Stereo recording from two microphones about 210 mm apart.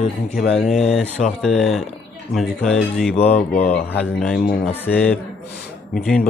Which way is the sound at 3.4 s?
35° left (ahead or behind).